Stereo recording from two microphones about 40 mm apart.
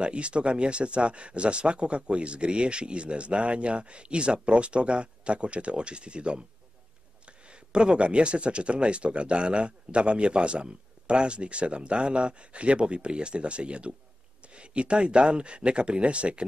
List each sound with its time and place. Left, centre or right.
0.0 s speech: right